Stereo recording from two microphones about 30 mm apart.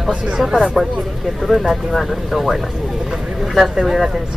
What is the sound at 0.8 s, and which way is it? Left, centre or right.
Speech, right.